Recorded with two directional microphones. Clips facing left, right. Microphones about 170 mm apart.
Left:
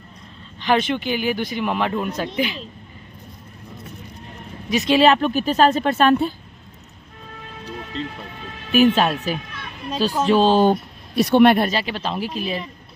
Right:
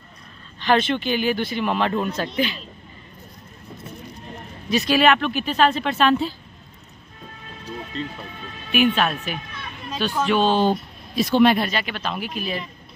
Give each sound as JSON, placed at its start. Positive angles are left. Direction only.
{"t": 0.6, "sound": "speech", "side_deg": 15}
{"t": 4.6, "sound": "speech", "side_deg": 20}
{"t": 8.7, "sound": "speech", "side_deg": 35}
{"t": 10.6, "sound": "speech", "side_deg": 60}
{"t": 11.7, "sound": "speech", "side_deg": 30}